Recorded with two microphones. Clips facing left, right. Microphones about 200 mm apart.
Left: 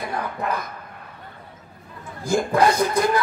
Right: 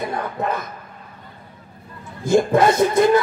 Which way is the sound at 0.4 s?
25° right (ahead or behind).